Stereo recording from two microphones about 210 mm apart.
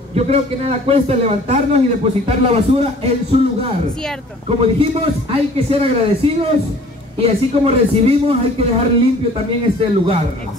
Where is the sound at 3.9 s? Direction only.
5° left (ahead or behind).